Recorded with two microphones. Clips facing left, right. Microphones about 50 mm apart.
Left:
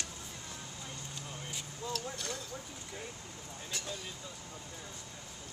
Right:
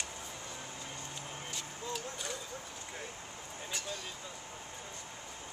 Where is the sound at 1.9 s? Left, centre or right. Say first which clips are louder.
Left 1 dB; centre.